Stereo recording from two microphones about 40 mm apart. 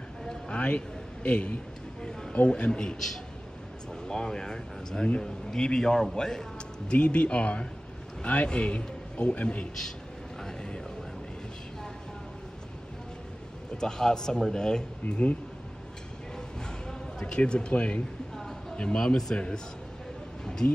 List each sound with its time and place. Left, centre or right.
0.5 s a man's voice: left
2.0 s a sound: centre
2.3 s speech: left
6.9 s a man's voice: left
10.4 s vehicle: left
13.7 s speech: centre
16.8 s speech: centre
20.6 s speech: left